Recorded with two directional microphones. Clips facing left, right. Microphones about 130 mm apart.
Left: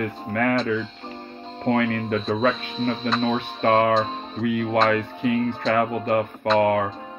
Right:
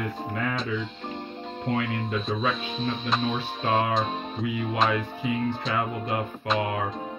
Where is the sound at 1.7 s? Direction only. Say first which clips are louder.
Left 6 dB; 50° left (ahead or behind).